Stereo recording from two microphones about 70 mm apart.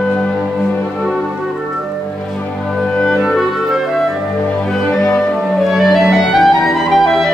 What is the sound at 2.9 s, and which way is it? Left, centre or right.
Music, centre.